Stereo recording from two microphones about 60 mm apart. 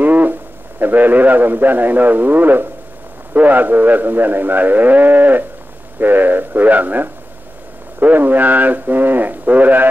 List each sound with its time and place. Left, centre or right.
0.0 s a man's voice: right